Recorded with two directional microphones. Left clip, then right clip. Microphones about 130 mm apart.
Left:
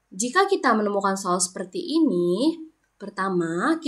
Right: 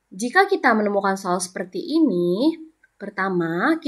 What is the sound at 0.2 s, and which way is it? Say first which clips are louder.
A woman's voice: right 3 dB; 30° right (ahead or behind).